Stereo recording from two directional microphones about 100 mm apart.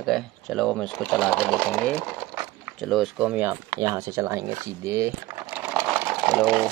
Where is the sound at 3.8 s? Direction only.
35° right (ahead or behind).